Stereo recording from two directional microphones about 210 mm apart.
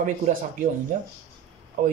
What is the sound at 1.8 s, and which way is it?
Speech, 35° right (ahead or behind).